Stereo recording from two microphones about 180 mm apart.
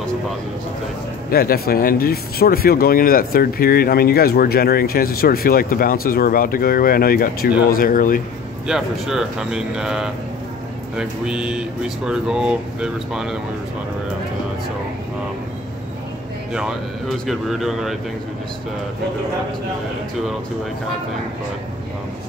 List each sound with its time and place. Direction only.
1.3 s speech: 55° left (ahead or behind)
8.6 s speech: 5° right (ahead or behind)
17.3 s speech: centre (ahead or behind)